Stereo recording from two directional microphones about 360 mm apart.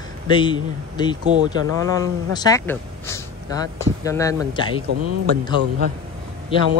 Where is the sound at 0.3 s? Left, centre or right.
Centre.